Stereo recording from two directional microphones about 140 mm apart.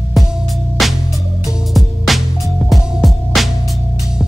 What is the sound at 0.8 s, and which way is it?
Music, centre (ahead or behind).